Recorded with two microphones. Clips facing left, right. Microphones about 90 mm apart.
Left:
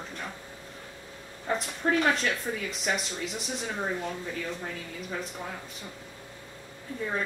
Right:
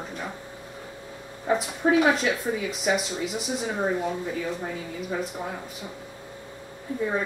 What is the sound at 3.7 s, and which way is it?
Speech, 15° right (ahead or behind).